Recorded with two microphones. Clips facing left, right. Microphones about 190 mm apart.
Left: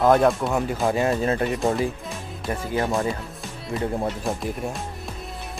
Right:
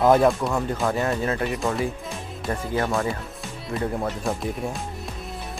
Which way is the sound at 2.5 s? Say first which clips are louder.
Even; 20° left (ahead or behind).